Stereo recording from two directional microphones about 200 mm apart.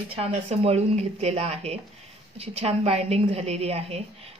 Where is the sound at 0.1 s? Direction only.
30° right (ahead or behind).